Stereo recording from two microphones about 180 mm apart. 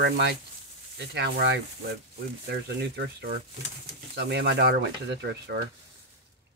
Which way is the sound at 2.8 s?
70° right (ahead or behind).